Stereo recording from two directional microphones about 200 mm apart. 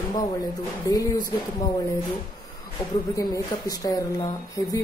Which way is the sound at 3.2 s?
20° left (ahead or behind).